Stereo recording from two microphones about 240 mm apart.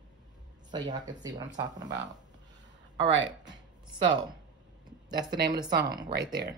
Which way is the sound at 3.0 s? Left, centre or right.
Right.